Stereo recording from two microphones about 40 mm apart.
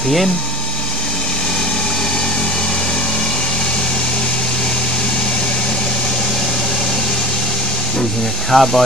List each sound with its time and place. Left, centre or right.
8.5 s speech: centre